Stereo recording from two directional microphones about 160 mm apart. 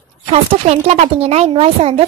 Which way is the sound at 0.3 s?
40° right (ahead or behind).